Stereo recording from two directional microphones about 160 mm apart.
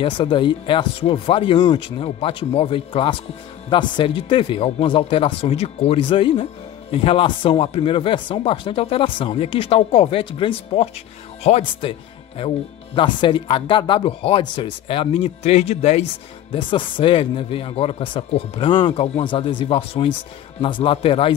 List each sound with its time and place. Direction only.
0.0 s speech: 30° left (ahead or behind)
16.5 s speech: 30° left (ahead or behind)